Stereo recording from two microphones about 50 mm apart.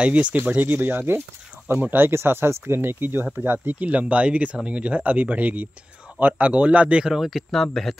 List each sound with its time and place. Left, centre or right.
0.0 s speech: right
0.7 s speech: right
7.2 s speech: centre